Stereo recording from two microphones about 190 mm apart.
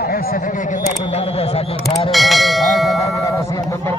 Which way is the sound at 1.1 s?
35° left (ahead or behind).